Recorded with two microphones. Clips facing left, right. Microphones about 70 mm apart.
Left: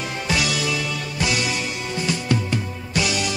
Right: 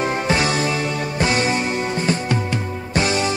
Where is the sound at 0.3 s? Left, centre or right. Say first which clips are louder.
Right 1 dB; right.